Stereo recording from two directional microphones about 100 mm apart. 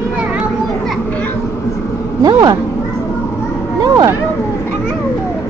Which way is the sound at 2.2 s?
40° right (ahead or behind).